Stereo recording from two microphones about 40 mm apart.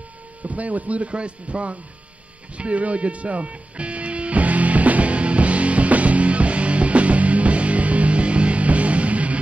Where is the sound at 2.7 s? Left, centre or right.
Right.